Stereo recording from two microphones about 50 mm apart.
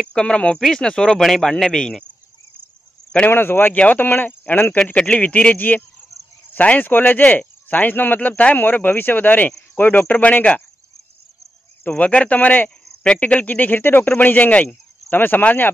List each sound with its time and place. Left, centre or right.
0.1 s a man's voice: centre
3.3 s speech: left
3.7 s speech: left
4.0 s speech: left
4.7 s speech: left
6.8 s speech: left
12.0 s speech: left
13.0 s speech: left